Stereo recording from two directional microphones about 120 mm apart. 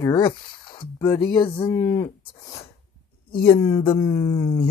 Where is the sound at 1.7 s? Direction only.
25° left (ahead or behind).